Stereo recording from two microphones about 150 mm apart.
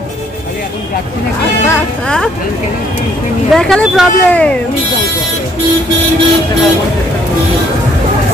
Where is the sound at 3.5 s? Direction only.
5° left (ahead or behind).